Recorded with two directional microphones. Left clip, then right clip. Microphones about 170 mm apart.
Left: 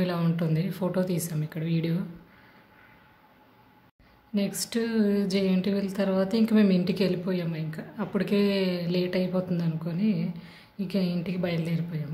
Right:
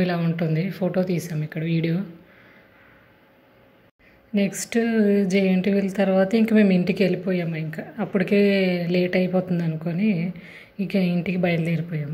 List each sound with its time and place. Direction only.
0.0 s speech: 5° right (ahead or behind)
4.3 s speech: 15° right (ahead or behind)